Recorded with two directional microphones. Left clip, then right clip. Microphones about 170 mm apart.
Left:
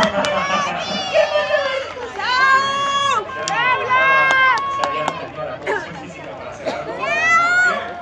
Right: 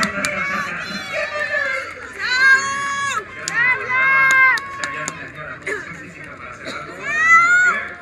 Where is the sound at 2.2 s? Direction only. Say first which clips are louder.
Right 1 dB; 25° left (ahead or behind).